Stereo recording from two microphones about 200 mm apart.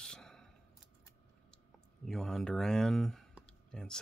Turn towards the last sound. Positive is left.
turn(degrees=5)  # may be behind; listen again after turning